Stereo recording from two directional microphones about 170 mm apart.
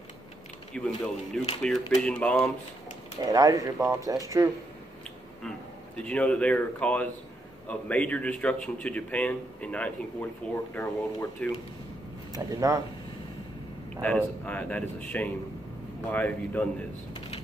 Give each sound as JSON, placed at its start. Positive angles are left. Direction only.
{"t": 0.7, "sound": "speech", "side_deg": 5}
{"t": 3.2, "sound": "speech", "side_deg": -20}
{"t": 5.9, "sound": "speech", "side_deg": 5}
{"t": 12.5, "sound": "speech", "side_deg": -20}
{"t": 14.0, "sound": "speech", "side_deg": 10}